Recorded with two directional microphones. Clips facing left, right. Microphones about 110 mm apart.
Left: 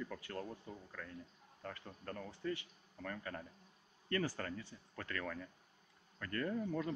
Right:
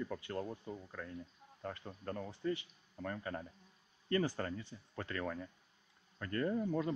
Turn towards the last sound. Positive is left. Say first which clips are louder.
# right 4 dB
turn(degrees=-20)  # may be behind; listen again after turning